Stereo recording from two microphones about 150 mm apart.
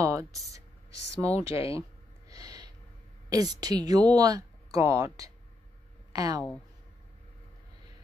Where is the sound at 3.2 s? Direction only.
25° right (ahead or behind).